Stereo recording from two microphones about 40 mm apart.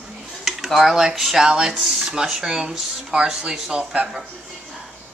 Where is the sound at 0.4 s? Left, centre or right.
Centre.